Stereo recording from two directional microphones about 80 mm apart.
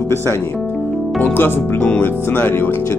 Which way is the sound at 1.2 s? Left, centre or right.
Left.